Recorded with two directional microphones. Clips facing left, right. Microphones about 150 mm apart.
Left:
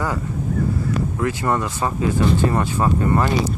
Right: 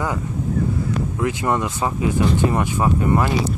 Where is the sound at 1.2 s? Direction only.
15° right (ahead or behind).